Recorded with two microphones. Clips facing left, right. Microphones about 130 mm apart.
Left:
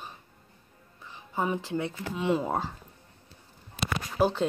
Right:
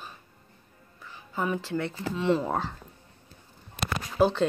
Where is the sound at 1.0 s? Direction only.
20° left (ahead or behind).